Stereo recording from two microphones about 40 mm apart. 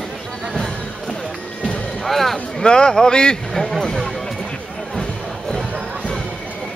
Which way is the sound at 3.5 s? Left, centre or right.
Centre.